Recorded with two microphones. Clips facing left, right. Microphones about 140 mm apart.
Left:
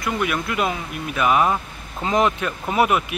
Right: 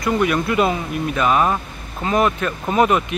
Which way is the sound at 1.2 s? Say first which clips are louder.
Even; 10° left (ahead or behind).